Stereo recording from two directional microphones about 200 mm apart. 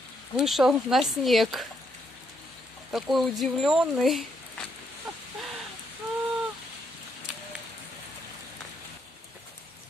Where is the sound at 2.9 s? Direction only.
Centre (ahead or behind).